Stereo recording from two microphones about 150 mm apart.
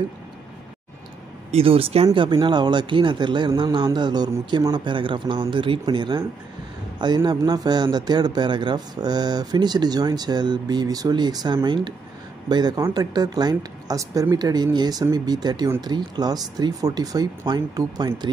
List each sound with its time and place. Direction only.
1.5 s speech: 40° right (ahead or behind)
2.0 s speech: 30° right (ahead or behind)
7.2 s speech: 25° right (ahead or behind)